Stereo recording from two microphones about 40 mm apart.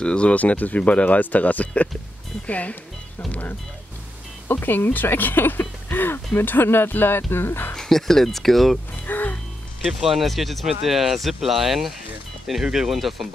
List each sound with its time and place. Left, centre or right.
0.0 s speech: left
0.3 s speech: left
3.3 s music: left
4.5 s speech: left
7.7 s speech: centre
9.0 s music: left
10.0 s speech: centre